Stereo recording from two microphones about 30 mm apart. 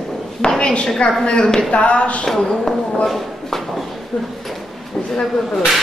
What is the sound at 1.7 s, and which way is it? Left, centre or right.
Speech, left.